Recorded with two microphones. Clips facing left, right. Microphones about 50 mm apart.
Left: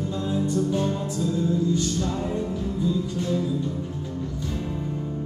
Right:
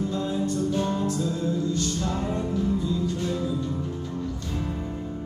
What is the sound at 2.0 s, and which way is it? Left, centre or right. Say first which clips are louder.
Music: left 1 dB; centre.